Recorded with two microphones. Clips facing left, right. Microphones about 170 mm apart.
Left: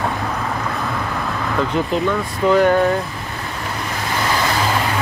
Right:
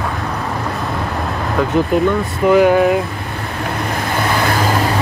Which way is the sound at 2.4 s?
10° right (ahead or behind).